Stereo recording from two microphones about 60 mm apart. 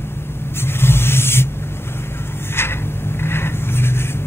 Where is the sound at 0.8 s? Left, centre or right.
Left.